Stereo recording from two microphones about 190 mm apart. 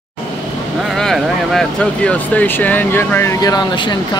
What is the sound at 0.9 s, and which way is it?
Speech, centre (ahead or behind).